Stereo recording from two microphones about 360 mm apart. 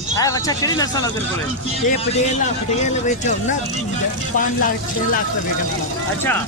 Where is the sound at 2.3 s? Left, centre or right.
Centre.